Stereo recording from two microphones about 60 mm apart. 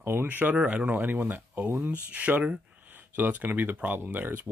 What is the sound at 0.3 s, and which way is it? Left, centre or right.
Speech, right.